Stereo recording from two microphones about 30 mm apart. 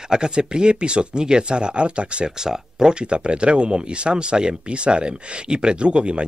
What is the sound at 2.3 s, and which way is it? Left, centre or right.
Speech, right.